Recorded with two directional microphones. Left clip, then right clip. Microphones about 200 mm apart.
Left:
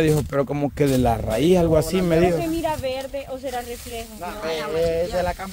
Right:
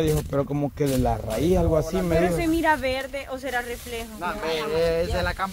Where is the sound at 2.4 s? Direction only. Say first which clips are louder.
Right 2 dB; 50° right (ahead or behind).